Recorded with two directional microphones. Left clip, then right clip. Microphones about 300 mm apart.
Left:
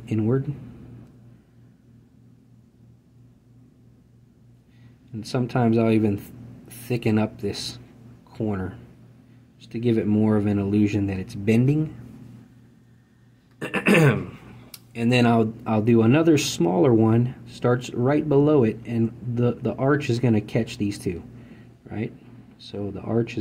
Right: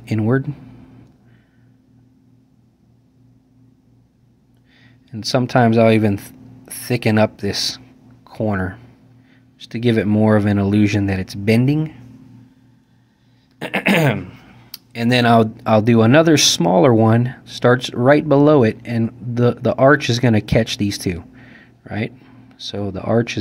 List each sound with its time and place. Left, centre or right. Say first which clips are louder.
0.0 s speech: right 5 dB; right
5.1 s speech: right 10 dB; centre
13.6 s speech: right 3 dB; right